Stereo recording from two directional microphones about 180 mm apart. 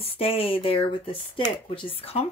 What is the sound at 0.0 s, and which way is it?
Speech, 30° left (ahead or behind).